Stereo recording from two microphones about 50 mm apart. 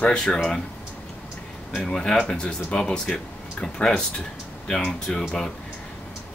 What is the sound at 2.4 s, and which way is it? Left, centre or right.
Speech, left.